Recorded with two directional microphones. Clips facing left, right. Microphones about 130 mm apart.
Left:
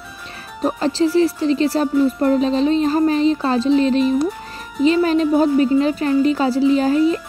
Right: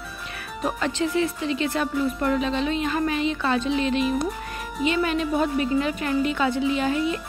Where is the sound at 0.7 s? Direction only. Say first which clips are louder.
Left 7 dB; 35° left (ahead or behind).